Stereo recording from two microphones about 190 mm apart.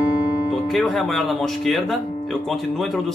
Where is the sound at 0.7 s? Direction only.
Centre (ahead or behind).